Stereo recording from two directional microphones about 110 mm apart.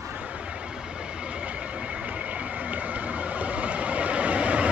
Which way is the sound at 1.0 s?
10° right (ahead or behind).